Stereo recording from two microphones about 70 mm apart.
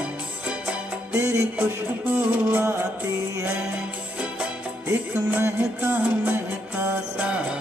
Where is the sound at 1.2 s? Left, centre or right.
Right.